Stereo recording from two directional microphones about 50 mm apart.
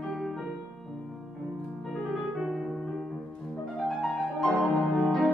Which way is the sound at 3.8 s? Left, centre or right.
Centre.